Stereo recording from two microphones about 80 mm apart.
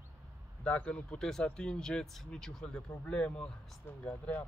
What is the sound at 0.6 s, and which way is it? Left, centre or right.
Speech, centre.